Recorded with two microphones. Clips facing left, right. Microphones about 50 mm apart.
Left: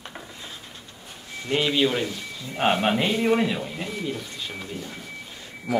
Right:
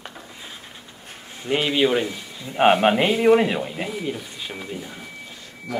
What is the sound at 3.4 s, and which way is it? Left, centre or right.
Speech, right.